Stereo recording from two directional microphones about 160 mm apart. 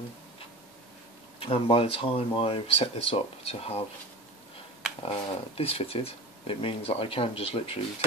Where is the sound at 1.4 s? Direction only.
35° left (ahead or behind).